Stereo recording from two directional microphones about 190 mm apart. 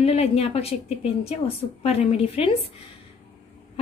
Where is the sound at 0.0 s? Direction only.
35° left (ahead or behind).